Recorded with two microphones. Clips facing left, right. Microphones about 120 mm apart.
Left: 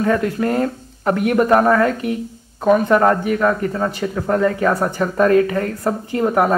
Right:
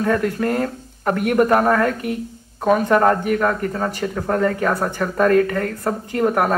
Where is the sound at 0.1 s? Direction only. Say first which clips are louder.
Left 2 dB; 20° left (ahead or behind).